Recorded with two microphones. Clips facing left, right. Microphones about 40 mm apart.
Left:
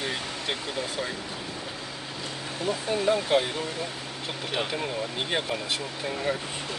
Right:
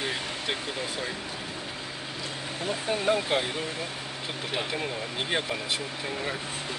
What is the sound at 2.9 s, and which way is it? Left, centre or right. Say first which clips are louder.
Speech: left 1 dB; right.